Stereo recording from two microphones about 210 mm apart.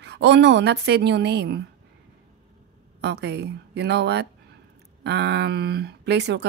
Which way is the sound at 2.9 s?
55° right (ahead or behind).